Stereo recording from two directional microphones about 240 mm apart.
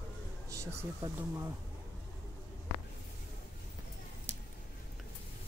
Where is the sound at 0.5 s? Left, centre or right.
Centre.